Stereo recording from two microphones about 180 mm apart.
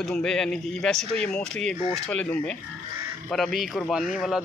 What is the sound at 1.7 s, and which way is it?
Speech, 35° left (ahead or behind).